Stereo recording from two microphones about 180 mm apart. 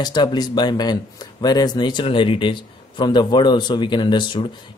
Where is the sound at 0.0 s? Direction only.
25° left (ahead or behind).